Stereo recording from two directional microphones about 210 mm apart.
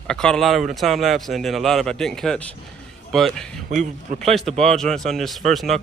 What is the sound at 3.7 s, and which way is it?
Speech, 35° right (ahead or behind).